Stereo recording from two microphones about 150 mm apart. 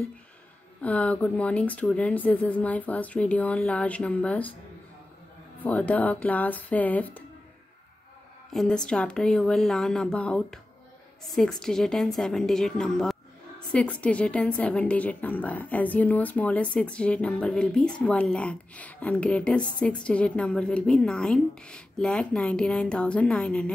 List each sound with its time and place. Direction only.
0.8 s a woman's voice: 10° left (ahead or behind)
5.6 s a woman's voice: 10° left (ahead or behind)
8.5 s a woman's voice: 5° left (ahead or behind)